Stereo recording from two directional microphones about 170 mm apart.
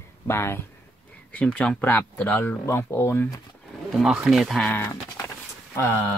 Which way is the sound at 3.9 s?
Centre (ahead or behind).